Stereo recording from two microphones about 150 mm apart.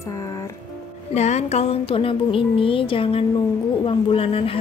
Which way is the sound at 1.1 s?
45° left (ahead or behind).